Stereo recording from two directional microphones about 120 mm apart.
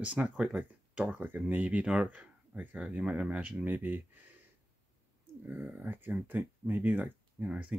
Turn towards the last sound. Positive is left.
turn(degrees=-10)  # may be behind; listen again after turning